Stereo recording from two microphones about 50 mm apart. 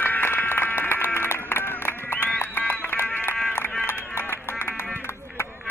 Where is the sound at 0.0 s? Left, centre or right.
Left.